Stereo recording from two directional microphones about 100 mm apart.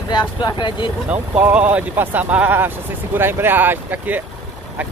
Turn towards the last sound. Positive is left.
turn(degrees=-20)  # may be behind; listen again after turning